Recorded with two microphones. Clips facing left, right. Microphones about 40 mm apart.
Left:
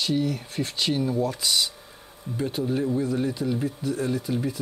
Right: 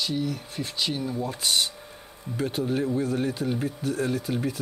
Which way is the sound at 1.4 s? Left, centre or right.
Right.